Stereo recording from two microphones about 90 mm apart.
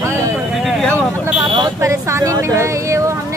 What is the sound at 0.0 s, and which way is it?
Vehicle, 30° right (ahead or behind).